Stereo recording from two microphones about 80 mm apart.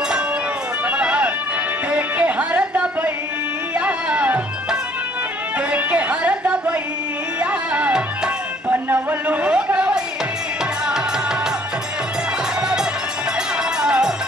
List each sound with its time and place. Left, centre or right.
0.8 s a sound: centre
1.9 s music: centre
3.8 s tabla: centre
5.7 s music: centre
8.6 s a sound: right
13.7 s music: centre